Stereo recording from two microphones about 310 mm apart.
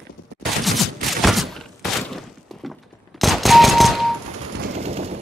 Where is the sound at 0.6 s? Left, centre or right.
Centre.